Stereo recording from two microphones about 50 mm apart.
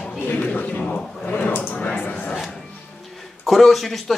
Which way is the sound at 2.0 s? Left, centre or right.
Left.